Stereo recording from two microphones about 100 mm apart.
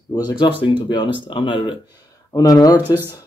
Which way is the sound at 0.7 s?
50° left (ahead or behind).